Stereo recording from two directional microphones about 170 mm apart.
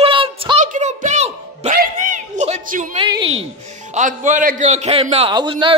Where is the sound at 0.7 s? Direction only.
45° right (ahead or behind).